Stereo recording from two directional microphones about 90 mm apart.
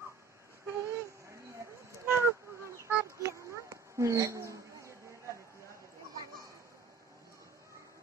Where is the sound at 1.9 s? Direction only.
30° right (ahead or behind).